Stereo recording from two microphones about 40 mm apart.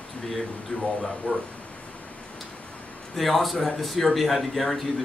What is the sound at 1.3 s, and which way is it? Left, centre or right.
Speech, left.